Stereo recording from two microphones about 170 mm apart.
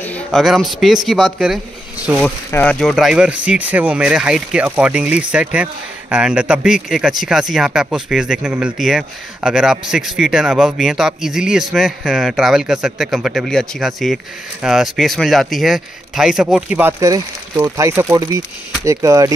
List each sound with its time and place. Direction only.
0.0 s a woman's voice: 5° left (ahead or behind); by 19.3 s 20° right (ahead or behind)